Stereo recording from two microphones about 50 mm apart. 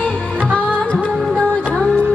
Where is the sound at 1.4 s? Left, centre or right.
Centre.